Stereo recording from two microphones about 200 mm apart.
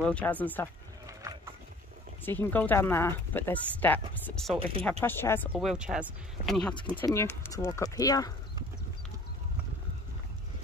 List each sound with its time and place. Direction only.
0.0 s speech: 5° left (ahead or behind)
1.0 s a sound: 15° right (ahead or behind)
2.2 s speech: 10° left (ahead or behind)
5.5 s speech: 5° right (ahead or behind); by 8.3 s 20° left (ahead or behind)